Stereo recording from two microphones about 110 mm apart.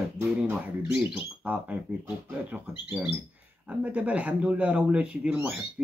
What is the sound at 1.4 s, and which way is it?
Speech, 15° right (ahead or behind).